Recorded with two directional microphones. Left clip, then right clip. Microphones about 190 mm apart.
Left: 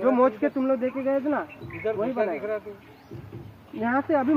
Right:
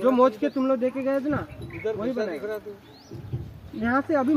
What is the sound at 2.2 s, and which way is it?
Speech, 25° right (ahead or behind).